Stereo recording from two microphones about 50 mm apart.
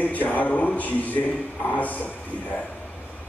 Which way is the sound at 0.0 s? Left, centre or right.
Left.